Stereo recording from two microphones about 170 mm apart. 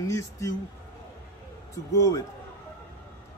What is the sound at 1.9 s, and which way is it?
Speech, 20° left (ahead or behind).